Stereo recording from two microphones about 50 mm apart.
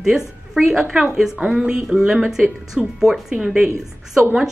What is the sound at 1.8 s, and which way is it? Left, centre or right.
A woman's voice, centre.